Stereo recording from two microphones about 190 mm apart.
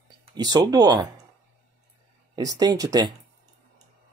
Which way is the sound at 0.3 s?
20° right (ahead or behind).